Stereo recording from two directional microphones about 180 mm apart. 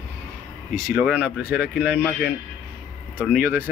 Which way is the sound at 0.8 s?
10° right (ahead or behind).